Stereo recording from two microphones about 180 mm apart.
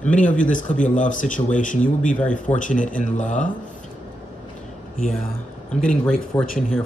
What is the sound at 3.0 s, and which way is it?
Speech, 45° left (ahead or behind).